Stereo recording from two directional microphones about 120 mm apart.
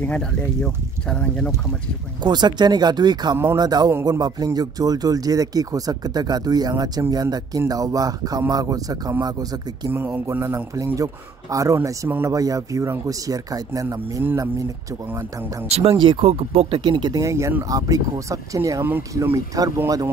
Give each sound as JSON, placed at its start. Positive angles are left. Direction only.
{"t": 0.0, "sound": "speech", "side_deg": 10}
{"t": 2.2, "sound": "speech", "side_deg": -35}
{"t": 9.8, "sound": "speech", "side_deg": -15}
{"t": 15.7, "sound": "speech", "side_deg": -55}
{"t": 16.8, "sound": "speech", "side_deg": -40}
{"t": 19.3, "sound": "speech", "side_deg": -30}